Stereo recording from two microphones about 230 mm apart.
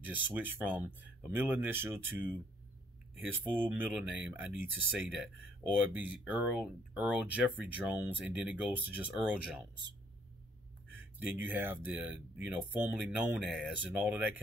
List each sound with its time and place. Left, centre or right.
0.0 s speech: centre
11.1 s speech: centre